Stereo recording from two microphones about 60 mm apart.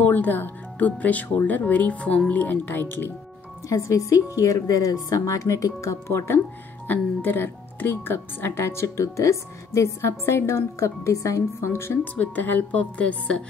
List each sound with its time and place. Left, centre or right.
0.0 s speech: left
3.6 s a woman's voice: left
6.9 s speech: left
12.0 s speech: left